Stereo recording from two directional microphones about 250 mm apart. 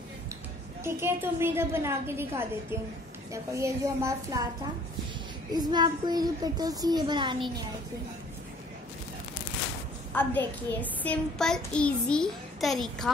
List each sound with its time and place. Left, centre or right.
0.8 s speech: centre
5.5 s speech: centre
10.1 s a child's voice: centre